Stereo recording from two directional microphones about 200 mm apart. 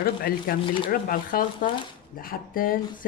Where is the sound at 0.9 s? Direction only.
45° left (ahead or behind).